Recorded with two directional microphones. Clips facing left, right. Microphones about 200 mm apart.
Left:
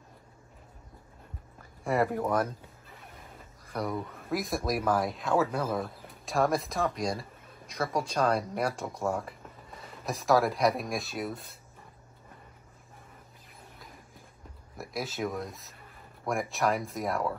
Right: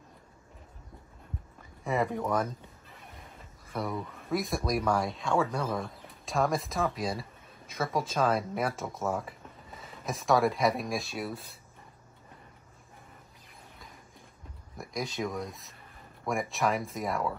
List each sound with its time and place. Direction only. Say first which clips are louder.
1.9 s speech: left 2 dB; centre (ahead or behind)
3.6 s speech: left 1 dB; centre (ahead or behind)
14.8 s speech: even; 5° left (ahead or behind)